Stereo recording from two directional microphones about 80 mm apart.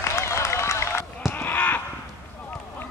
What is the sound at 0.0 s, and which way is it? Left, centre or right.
Run, left.